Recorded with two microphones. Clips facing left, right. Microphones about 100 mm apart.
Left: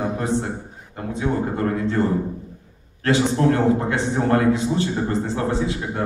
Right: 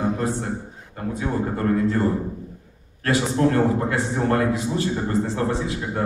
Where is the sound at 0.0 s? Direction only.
25° left (ahead or behind).